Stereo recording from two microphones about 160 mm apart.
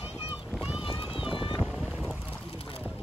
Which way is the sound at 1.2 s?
Centre (ahead or behind).